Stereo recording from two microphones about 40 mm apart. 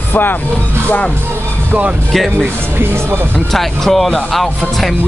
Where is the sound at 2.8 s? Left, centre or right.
Right.